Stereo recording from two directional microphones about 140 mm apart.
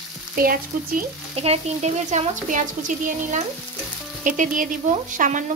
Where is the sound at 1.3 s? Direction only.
50° right (ahead or behind).